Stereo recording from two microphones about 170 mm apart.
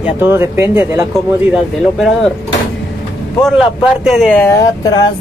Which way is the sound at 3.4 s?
5° right (ahead or behind).